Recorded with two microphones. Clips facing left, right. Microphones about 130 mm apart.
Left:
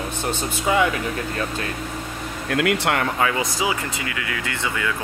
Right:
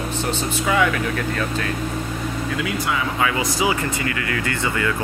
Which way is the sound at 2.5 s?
70° left (ahead or behind).